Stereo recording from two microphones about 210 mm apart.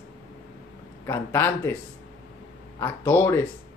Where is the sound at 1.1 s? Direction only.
10° left (ahead or behind).